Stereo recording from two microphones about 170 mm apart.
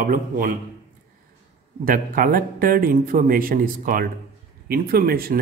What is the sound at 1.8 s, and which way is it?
Speech, 55° right (ahead or behind).